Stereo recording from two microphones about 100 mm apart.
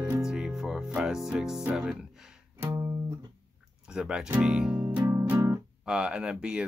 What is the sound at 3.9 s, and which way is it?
Speech, 10° right (ahead or behind).